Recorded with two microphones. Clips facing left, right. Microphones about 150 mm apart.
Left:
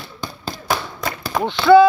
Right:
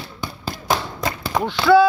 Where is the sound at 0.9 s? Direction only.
20° right (ahead or behind).